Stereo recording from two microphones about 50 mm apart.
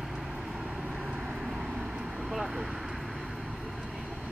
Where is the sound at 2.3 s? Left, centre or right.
Centre.